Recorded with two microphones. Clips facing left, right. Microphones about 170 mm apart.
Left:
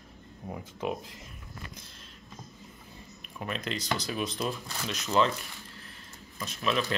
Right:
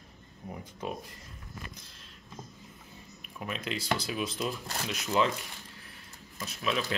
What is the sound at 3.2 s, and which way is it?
Speech, 5° right (ahead or behind).